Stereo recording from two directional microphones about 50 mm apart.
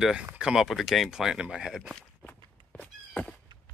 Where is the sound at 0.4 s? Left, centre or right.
Centre.